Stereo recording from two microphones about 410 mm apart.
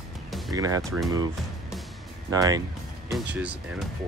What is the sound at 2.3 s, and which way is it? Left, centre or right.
Speech, centre.